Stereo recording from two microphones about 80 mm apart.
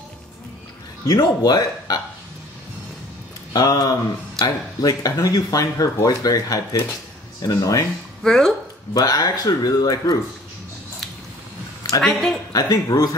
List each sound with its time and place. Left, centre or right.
1.0 s speech: left
3.5 s speech: left
8.2 s speech: centre
8.9 s speech: left
12.0 s speech: centre
12.5 s speech: left